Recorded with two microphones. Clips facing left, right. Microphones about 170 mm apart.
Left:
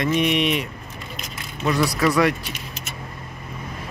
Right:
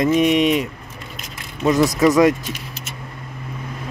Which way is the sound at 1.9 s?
20° right (ahead or behind).